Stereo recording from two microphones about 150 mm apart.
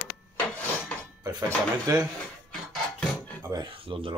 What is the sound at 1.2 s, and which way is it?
Dishes, 25° right (ahead or behind).